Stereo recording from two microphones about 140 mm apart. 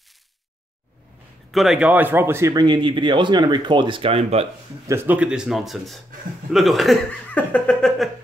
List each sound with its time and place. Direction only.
1.5 s speech: centre (ahead or behind); by 2.6 s 20° right (ahead or behind)
2.6 s speech: 35° right (ahead or behind)
4.8 s speech: 15° right (ahead or behind); by 7.2 s centre (ahead or behind)
7.3 s a sound: 10° left (ahead or behind)